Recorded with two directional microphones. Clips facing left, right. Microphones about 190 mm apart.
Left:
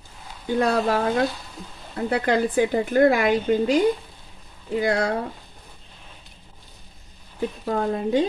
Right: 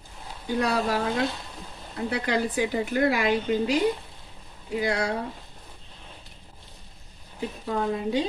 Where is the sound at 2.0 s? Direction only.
50° left (ahead or behind).